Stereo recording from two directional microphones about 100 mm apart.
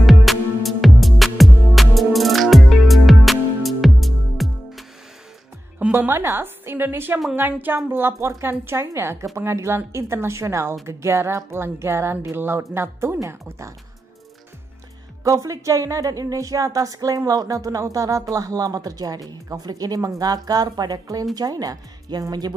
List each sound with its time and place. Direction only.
0.0 s music: centre (ahead or behind)
5.8 s a woman's voice: 20° right (ahead or behind)
15.2 s speech: 30° right (ahead or behind)